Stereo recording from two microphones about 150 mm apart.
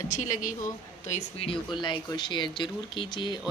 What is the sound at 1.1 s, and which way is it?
A man's voice, 40° left (ahead or behind).